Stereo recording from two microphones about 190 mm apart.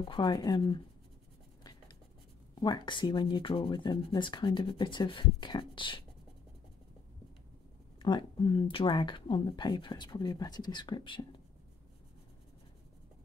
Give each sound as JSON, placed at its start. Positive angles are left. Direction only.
{"t": 0.0, "sound": "speech", "side_deg": 25}
{"t": 2.5, "sound": "speech", "side_deg": 25}
{"t": 8.0, "sound": "speech", "side_deg": 25}